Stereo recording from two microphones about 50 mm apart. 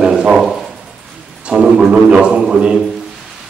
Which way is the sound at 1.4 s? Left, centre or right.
Centre.